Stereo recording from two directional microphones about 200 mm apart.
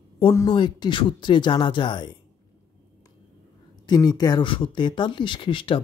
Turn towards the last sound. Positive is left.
turn(degrees=25)  # may be behind; listen again after turning